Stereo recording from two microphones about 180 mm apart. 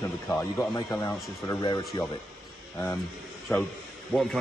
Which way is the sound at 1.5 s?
20° left (ahead or behind).